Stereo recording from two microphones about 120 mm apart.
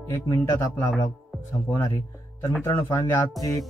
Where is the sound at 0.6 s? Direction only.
20° left (ahead or behind).